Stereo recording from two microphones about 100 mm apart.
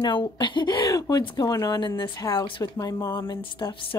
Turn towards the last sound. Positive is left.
turn(degrees=60)  # may be behind; listen again after turning